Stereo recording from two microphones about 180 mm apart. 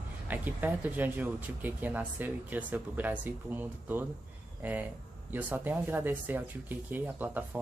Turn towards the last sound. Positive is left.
turn(degrees=-10)  # may be behind; listen again after turning